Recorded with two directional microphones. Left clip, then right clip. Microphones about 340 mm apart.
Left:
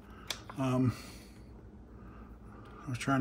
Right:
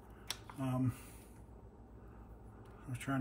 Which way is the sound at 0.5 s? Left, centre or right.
Centre.